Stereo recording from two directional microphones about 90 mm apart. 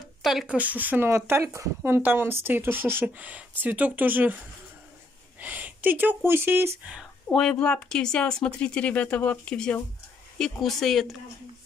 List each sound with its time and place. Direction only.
0.2 s a sound: 5° right (ahead or behind)
0.5 s speech: 15° right (ahead or behind)
1.1 s speech: 30° right (ahead or behind)
5.4 s speech: 20° right (ahead or behind)
7.3 s speech: 10° left (ahead or behind)